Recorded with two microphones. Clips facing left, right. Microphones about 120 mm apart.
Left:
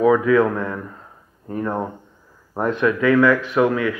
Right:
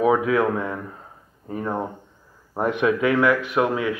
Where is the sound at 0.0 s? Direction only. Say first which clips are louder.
Left 4 dB; 15° right (ahead or behind).